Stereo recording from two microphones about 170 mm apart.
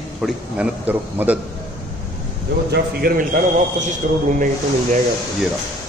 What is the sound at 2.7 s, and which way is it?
A man's voice, 60° right (ahead or behind).